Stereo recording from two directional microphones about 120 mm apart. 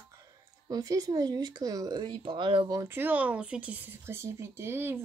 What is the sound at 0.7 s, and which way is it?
Speech, 30° right (ahead or behind).